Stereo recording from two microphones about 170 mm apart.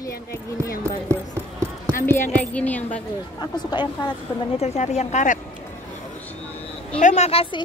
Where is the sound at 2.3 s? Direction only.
10° left (ahead or behind).